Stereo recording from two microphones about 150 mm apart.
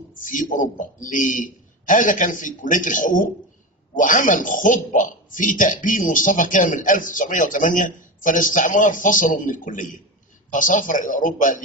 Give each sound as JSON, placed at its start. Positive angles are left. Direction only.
{"t": 0.1, "sound": "a man's voice", "side_deg": 60}